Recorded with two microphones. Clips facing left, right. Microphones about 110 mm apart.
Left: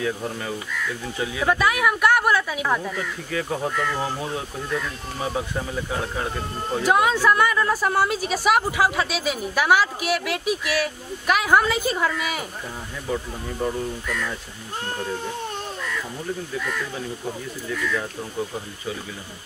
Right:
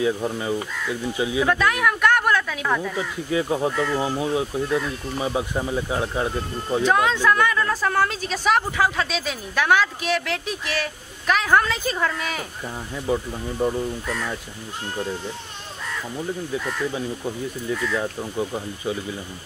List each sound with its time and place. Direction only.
0.0 s speech: 15° right (ahead or behind)
1.5 s a woman's voice: 10° left (ahead or behind)
3.0 s speech: 20° right (ahead or behind)
3.7 s speech: 30° right (ahead or behind)
4.0 s speech: 15° right (ahead or behind)
6.8 s a woman's voice: 10° left (ahead or behind)
13.1 s speech: 10° right (ahead or behind)
14.0 s speech: 30° right (ahead or behind)